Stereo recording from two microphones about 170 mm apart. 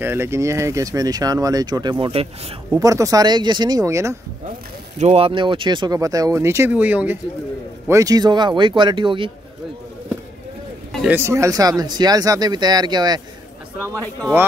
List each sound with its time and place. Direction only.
0.0 s speech: 15° right (ahead or behind); by 2.2 s 30° right (ahead or behind)
2.7 s speech: 20° right (ahead or behind)
4.9 s speech: 40° right (ahead or behind); by 7.2 s 10° right (ahead or behind)
7.9 s speech: 20° right (ahead or behind)
11.1 s speech: 15° right (ahead or behind)